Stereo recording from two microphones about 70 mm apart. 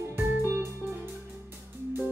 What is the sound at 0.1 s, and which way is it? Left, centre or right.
Music, right.